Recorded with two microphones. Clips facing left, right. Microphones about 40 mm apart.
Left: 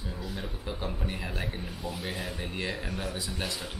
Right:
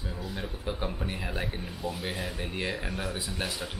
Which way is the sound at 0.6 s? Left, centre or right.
Centre.